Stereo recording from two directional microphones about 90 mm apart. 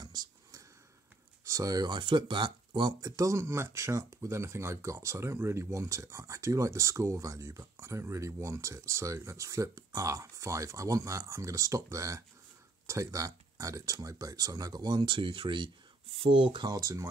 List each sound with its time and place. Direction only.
0.0 s a sound: 45° right (ahead or behind)
1.4 s speech: 35° right (ahead or behind); by 2.9 s 55° right (ahead or behind)
3.0 s speech: 40° right (ahead or behind); by 15.7 s 65° right (ahead or behind)
16.2 s speech: 90° right
16.6 s speech: 45° right (ahead or behind)